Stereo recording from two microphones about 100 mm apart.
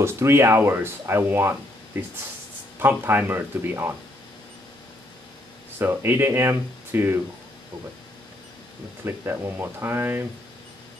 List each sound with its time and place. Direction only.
0.0 s speech: 25° right (ahead or behind)
5.8 s speech: 20° right (ahead or behind)
9.0 s speech: 25° right (ahead or behind)